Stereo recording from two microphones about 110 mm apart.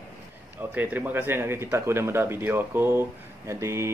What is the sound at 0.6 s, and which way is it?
Speech, 15° right (ahead or behind).